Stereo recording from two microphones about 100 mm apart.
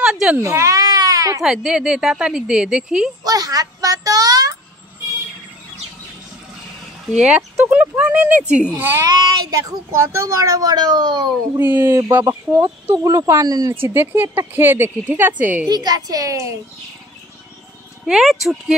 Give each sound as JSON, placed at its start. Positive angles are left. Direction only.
{"t": 0.0, "sound": "sheep", "side_deg": -5}
{"t": 0.4, "sound": "baby cry", "side_deg": -30}
{"t": 1.4, "sound": "speech", "side_deg": -5}
{"t": 3.3, "sound": "a sound", "side_deg": -40}
{"t": 7.2, "sound": "speech", "side_deg": -10}
{"t": 9.0, "sound": "a child's voice", "side_deg": -50}
{"t": 9.5, "sound": "speech", "side_deg": -30}
{"t": 11.5, "sound": "speech", "side_deg": -20}
{"t": 13.5, "sound": "speech", "side_deg": -40}
{"t": 13.8, "sound": "speech", "side_deg": -20}
{"t": 15.7, "sound": "speech", "side_deg": -40}
{"t": 18.0, "sound": "speech", "side_deg": -5}